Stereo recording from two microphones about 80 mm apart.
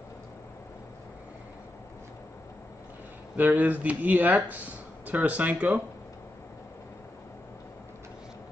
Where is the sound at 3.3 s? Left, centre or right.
Right.